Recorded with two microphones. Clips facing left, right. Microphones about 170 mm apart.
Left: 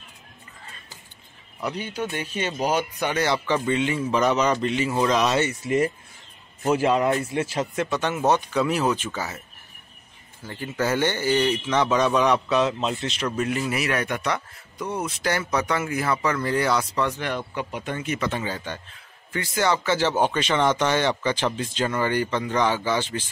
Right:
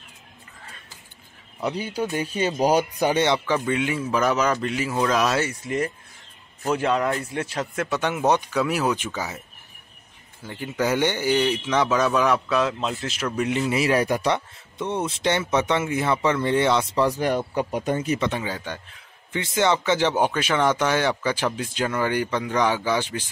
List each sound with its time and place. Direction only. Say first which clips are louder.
1.6 s speech: right 3 dB; 30° right (ahead or behind)
3.4 s speech: even; 10° right (ahead or behind)
7.9 s speech: right 1 dB; 10° right (ahead or behind)
10.4 s speech: right 1 dB; 15° right (ahead or behind)
13.5 s speech: right 4 dB; 25° right (ahead or behind)
17.2 s speech: right 6 dB; 40° right (ahead or behind)
18.2 s speech: right 1 dB; 15° right (ahead or behind)